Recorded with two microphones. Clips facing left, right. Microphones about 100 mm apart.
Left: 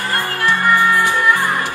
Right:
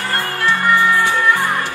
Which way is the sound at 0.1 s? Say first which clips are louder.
Even; 15° left (ahead or behind).